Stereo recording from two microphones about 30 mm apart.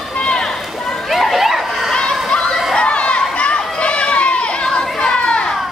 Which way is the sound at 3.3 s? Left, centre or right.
Left.